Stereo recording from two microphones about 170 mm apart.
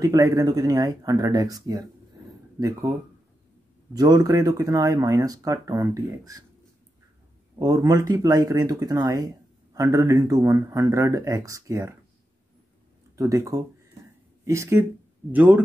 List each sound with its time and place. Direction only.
0.0 s speech: 20° right (ahead or behind)
7.5 s speech: 20° right (ahead or behind)
13.1 s speech: 20° right (ahead or behind)